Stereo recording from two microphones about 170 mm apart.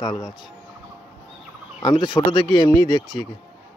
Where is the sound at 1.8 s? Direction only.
30° left (ahead or behind).